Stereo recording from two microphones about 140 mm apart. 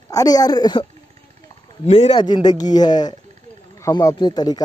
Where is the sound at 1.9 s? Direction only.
45° left (ahead or behind).